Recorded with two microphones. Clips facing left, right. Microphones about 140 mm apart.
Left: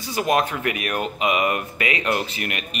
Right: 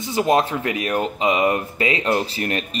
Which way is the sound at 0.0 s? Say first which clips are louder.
Right 3 dB; 25° right (ahead or behind).